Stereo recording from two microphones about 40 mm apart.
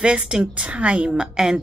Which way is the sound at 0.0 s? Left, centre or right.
Right.